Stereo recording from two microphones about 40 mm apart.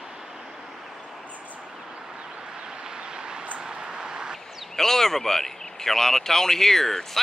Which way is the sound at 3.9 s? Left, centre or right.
Right.